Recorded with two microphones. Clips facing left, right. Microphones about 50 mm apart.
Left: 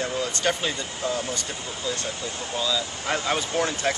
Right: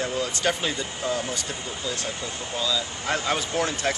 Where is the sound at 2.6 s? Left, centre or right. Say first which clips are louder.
Even; centre.